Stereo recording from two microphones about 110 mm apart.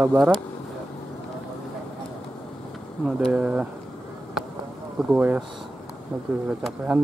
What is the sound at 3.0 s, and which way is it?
Speech, 10° right (ahead or behind).